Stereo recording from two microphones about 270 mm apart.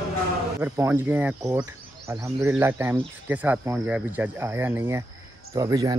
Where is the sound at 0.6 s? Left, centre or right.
Centre.